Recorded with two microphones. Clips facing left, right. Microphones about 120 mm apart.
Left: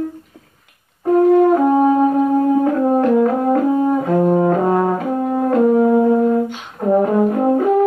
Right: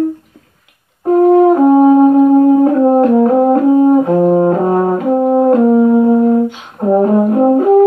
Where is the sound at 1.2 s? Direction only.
40° right (ahead or behind).